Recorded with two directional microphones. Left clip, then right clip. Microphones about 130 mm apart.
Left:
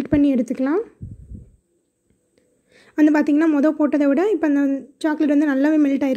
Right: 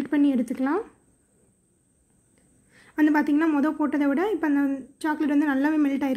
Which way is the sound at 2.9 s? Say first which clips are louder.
Left 5 dB; 30° left (ahead or behind).